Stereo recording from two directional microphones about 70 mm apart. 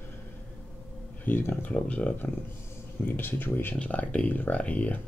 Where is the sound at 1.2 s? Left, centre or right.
Left.